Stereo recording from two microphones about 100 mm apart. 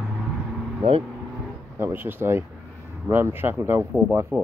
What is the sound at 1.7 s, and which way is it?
Speech, 20° right (ahead or behind).